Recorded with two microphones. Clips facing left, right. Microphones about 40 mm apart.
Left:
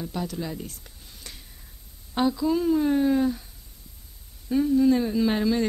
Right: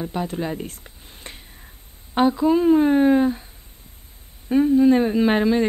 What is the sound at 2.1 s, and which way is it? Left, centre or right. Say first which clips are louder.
Speech: right 6 dB; right.